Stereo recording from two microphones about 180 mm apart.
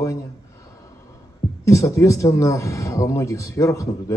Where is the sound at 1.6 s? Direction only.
15° left (ahead or behind).